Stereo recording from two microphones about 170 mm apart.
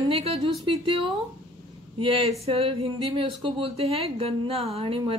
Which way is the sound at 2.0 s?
35° right (ahead or behind).